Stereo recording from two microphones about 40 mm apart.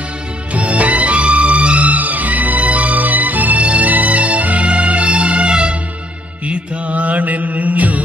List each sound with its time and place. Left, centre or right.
0.5 s music: right